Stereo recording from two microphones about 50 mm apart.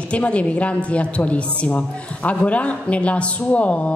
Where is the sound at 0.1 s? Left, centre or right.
Left.